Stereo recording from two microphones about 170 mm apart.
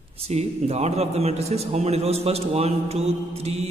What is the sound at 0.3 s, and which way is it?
A man's voice, 40° right (ahead or behind).